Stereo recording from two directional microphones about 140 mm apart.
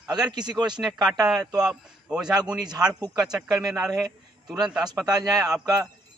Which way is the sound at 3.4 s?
30° right (ahead or behind).